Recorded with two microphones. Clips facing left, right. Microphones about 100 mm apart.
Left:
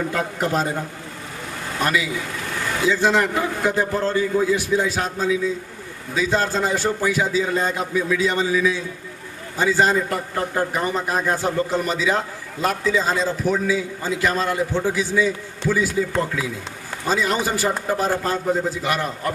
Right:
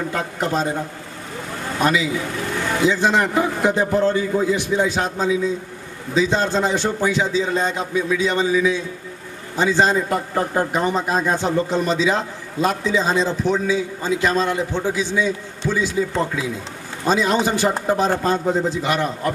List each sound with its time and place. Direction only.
0.4 s a man's voice: 20° right (ahead or behind)
1.8 s a man's voice: 20° right (ahead or behind)
17.0 s a man's voice: 20° right (ahead or behind)